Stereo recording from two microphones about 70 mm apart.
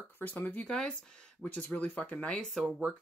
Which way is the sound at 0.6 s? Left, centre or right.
Centre.